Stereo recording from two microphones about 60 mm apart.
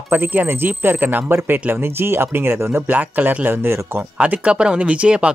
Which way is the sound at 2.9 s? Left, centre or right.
Right.